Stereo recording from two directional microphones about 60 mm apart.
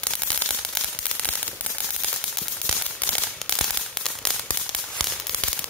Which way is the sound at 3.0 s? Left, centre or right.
Centre.